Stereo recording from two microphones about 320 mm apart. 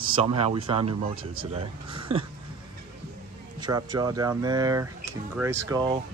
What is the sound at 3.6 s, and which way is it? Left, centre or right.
Speech, centre.